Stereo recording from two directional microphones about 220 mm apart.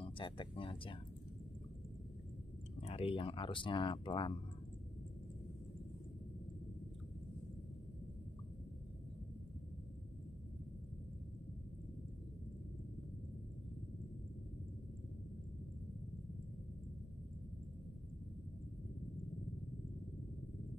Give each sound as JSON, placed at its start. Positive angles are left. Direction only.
{"t": 0.0, "sound": "speech", "side_deg": 25}
{"t": 2.8, "sound": "speech", "side_deg": 25}